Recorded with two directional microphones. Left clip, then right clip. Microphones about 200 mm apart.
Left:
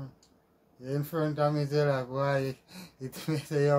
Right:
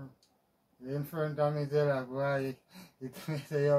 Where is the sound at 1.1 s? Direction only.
60° left (ahead or behind).